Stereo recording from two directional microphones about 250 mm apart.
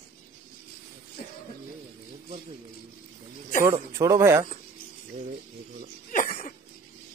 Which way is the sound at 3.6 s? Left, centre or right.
Centre.